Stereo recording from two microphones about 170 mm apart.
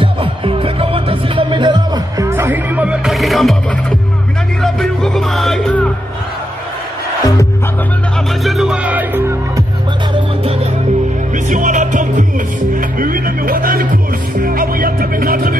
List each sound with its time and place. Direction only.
0.0 s music: 35° right (ahead or behind)
2.2 s music: 15° right (ahead or behind)
4.6 s music: 5° left (ahead or behind)
8.5 s music: 5° right (ahead or behind)
10.1 s music: 30° right (ahead or behind)
11.3 s music: 45° right (ahead or behind)